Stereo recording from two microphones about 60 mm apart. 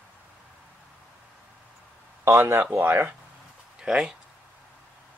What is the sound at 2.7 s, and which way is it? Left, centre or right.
Speech, right.